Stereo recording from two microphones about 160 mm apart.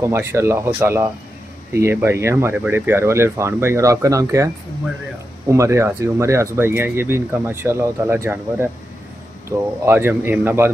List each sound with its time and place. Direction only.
0.0 s speech: 15° right (ahead or behind)
5.5 s speech: 20° right (ahead or behind)